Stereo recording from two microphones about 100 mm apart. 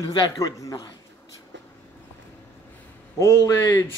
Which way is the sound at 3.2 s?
30° left (ahead or behind).